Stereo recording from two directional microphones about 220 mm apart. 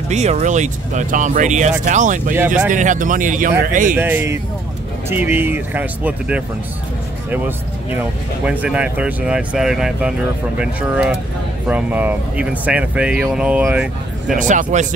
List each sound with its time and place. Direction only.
0.1 s speech: 30° right (ahead or behind)
3.9 s speech: 10° right (ahead or behind)
14.4 s speech: 35° right (ahead or behind)